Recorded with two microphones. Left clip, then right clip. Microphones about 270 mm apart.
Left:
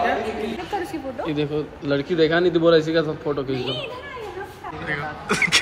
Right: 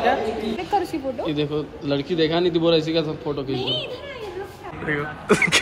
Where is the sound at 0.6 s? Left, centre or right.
Centre.